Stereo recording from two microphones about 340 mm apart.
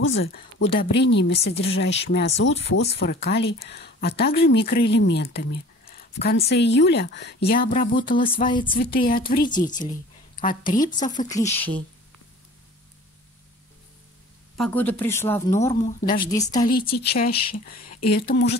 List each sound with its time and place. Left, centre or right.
0.7 s speech: left
8.7 s speech: left
10.3 s a sound: left
10.6 s speech: left; by 11.8 s centre
14.6 s speech: centre
15.6 s speech: centre
16.9 s speech: left